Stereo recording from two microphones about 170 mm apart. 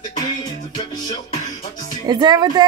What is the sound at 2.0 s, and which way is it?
Speech, 25° right (ahead or behind).